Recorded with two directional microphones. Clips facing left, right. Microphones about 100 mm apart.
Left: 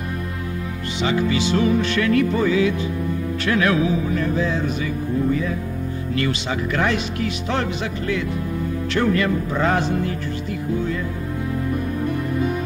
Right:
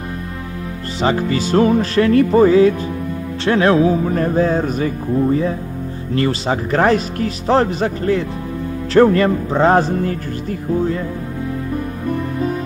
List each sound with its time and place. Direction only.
1.0 s music: 40° right (ahead or behind)
3.4 s speech: 35° right (ahead or behind)
6.1 s music: 35° right (ahead or behind)